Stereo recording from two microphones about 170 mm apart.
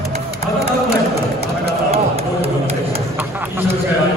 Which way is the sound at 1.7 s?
35° right (ahead or behind).